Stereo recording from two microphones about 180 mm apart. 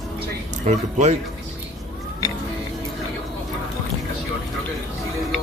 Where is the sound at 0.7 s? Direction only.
40° right (ahead or behind).